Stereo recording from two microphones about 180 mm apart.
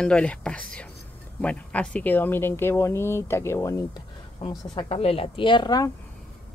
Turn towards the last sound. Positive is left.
turn(degrees=25)  # may be behind; listen again after turning